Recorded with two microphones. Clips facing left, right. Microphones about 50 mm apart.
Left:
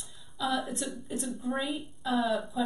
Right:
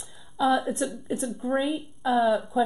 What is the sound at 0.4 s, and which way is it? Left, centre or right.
Speech, centre.